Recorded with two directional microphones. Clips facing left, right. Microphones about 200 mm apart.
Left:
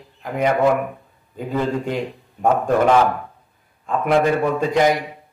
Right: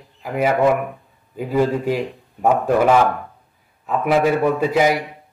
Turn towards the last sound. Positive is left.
turn(degrees=-5)  # may be behind; listen again after turning